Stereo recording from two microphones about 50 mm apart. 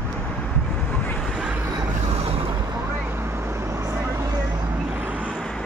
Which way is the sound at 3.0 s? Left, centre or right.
Right.